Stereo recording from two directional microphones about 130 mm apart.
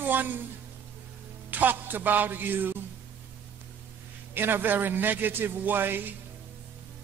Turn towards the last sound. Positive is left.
turn(degrees=-15)  # may be behind; listen again after turning